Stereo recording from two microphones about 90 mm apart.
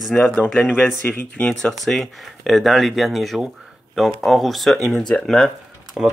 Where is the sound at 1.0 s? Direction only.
15° left (ahead or behind).